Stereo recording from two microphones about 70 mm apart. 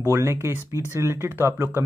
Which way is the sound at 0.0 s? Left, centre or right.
Right.